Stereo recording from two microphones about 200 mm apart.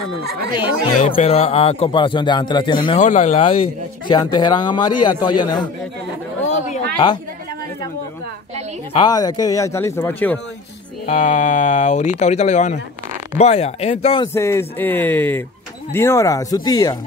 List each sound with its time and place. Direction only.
0.2 s speech: 55° right (ahead or behind)
1.0 s a man's voice: 30° left (ahead or behind)
3.0 s a man's voice: 35° left (ahead or behind); by 5.7 s 20° left (ahead or behind)
8.9 s speech: 20° left (ahead or behind)
11.1 s speech: 40° left (ahead or behind)
14.3 s speech: 15° left (ahead or behind)